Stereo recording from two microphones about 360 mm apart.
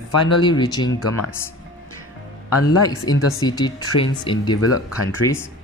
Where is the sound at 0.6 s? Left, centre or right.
Centre.